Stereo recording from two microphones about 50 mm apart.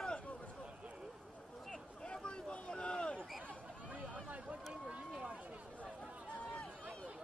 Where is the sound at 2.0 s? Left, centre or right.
Centre.